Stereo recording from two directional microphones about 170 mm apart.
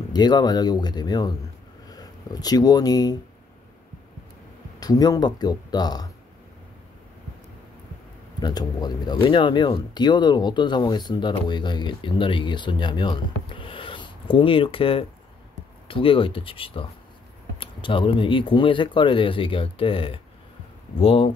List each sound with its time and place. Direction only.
0.1 s speech: 25° left (ahead or behind)
4.7 s speech: 20° left (ahead or behind)
8.4 s speech: 25° left (ahead or behind)